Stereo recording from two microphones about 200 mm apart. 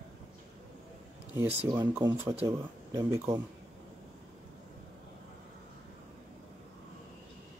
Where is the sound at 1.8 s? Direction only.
15° right (ahead or behind).